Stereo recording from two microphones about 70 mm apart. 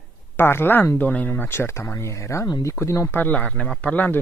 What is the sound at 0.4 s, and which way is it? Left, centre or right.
Speech, left.